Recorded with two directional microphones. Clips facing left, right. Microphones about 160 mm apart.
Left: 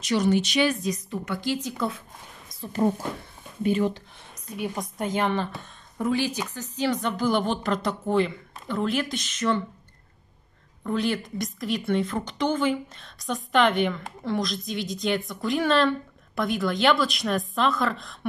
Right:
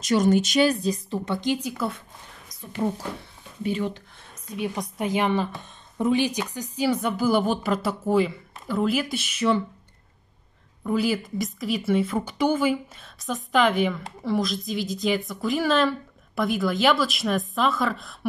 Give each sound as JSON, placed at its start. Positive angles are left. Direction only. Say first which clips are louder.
{"t": 0.0, "sound": "a woman's voice", "louder": "right 3 dB", "side_deg": -45}
{"t": 3.6, "sound": "speech", "louder": "left 3 dB", "side_deg": 50}
{"t": 4.6, "sound": "a woman's voice", "louder": "right 2 dB", "side_deg": -5}
{"t": 5.6, "sound": "a woman's voice", "louder": "right 3 dB", "side_deg": -20}
{"t": 10.8, "sound": "a woman's voice", "louder": "right 2 dB", "side_deg": -5}